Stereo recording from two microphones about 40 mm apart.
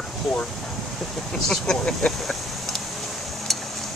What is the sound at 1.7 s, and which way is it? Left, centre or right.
Speech, centre.